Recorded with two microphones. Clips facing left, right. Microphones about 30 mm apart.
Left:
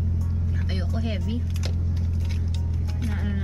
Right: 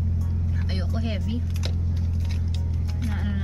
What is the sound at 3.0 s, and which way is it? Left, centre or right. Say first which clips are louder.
Vehicle: even; centre.